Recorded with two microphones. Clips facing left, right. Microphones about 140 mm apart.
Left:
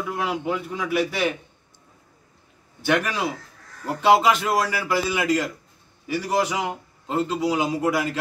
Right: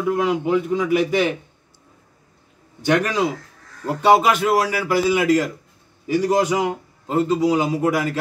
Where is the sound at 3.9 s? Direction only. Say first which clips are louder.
Right 2 dB; 15° right (ahead or behind).